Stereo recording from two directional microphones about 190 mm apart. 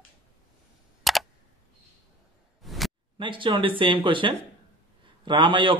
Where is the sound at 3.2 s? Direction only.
25° right (ahead or behind).